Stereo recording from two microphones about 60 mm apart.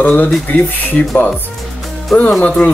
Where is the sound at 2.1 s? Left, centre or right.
Centre.